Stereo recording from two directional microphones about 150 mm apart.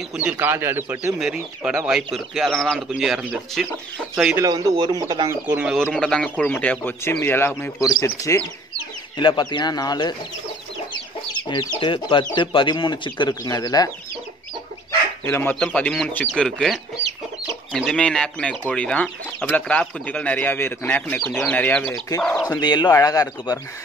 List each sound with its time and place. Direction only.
0.2 s speech: 15° right (ahead or behind)
4.4 s speech: 20° right (ahead or behind)
4.7 s speech: 30° right (ahead or behind)
5.3 s speech: 10° right (ahead or behind)
5.9 s speech: 5° left (ahead or behind); by 10.1 s 30° left (ahead or behind)
11.4 s speech: 30° left (ahead or behind)
15.2 s speech: 15° left (ahead or behind)
22.6 s speech: 30° left (ahead or behind)